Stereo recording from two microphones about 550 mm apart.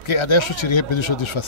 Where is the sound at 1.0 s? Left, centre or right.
Left.